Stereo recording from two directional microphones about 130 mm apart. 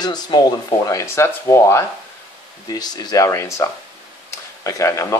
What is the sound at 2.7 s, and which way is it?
Speech, 30° left (ahead or behind).